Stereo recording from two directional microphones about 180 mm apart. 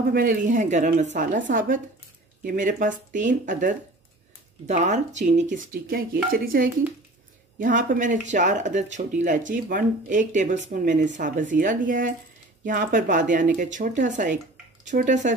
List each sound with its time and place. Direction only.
0.1 s speech: 55° right (ahead or behind)